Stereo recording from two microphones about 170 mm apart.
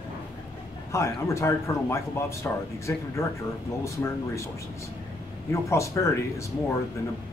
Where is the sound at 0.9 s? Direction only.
15° left (ahead or behind).